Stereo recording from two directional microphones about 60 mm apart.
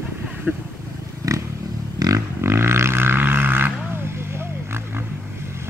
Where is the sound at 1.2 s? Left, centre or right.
Right.